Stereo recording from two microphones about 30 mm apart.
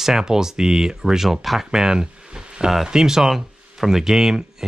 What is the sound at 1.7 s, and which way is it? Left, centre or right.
Speech, right.